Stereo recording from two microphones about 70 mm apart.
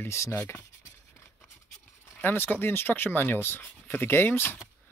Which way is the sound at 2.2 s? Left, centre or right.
Left.